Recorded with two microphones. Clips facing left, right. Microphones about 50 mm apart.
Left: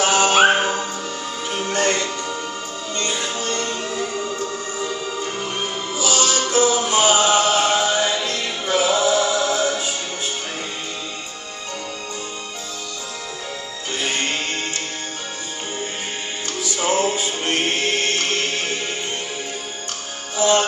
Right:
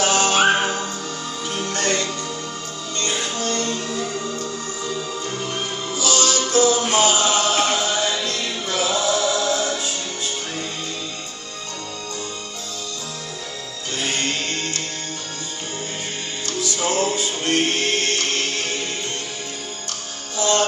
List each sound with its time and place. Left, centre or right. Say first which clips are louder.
0.0 s music: left 2 dB; left
6.9 s chant: left 2 dB; left
14.0 s music: left 1 dB; left
16.4 s music: left 1 dB; centre
20.3 s music: left 3 dB; centre